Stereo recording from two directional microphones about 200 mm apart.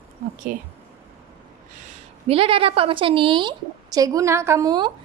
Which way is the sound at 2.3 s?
30° right (ahead or behind).